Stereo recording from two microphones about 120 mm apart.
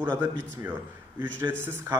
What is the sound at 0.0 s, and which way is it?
A man's voice, 15° right (ahead or behind).